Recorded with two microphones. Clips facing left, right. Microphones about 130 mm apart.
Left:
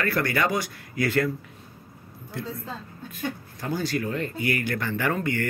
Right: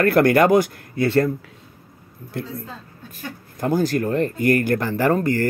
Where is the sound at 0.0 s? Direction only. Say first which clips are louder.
Right 10 dB; 55° right (ahead or behind).